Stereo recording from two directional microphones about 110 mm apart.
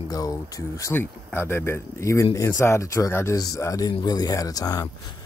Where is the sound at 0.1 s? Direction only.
35° left (ahead or behind).